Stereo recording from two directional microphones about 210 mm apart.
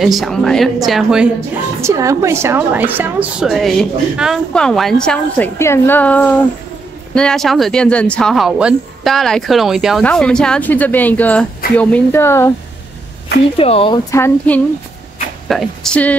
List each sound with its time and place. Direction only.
0.0 s speech: centre (ahead or behind)
1.8 s speech: 15° right (ahead or behind); by 12.5 s 10° left (ahead or behind)
13.6 s speech: 25° left (ahead or behind)
14.1 s speech: 10° left (ahead or behind)